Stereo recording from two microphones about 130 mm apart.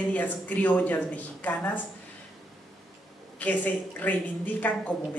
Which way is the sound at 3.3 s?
10° left (ahead or behind).